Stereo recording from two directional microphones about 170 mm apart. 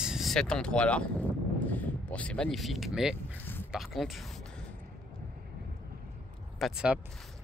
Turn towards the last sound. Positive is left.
turn(degrees=-5)  # may be behind; listen again after turning